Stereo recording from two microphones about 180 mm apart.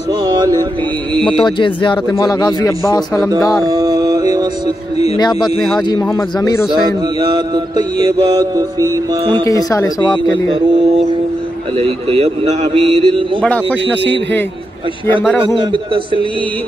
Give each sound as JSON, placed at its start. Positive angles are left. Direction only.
{"t": 0.2, "sound": "a sound", "side_deg": -20}
{"t": 1.2, "sound": "speech", "side_deg": 25}
{"t": 3.6, "sound": "a sound", "side_deg": -20}
{"t": 5.8, "sound": "speech", "side_deg": 25}
{"t": 7.2, "sound": "mantra", "side_deg": -25}
{"t": 9.4, "sound": "speech", "side_deg": 20}
{"t": 11.8, "sound": "a man's voice", "side_deg": -35}
{"t": 15.4, "sound": "mantra", "side_deg": -30}